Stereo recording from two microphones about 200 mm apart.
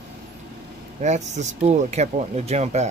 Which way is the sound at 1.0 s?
35° right (ahead or behind).